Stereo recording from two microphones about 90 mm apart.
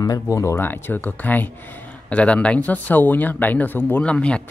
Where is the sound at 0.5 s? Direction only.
20° left (ahead or behind).